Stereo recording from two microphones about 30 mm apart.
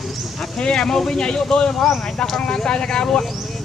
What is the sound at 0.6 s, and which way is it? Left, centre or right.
Speech, centre.